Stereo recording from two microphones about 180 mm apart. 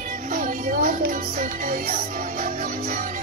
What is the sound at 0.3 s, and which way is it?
Music, 50° right (ahead or behind).